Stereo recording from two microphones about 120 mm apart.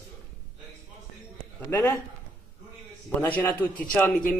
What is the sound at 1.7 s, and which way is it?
Speech, 15° left (ahead or behind).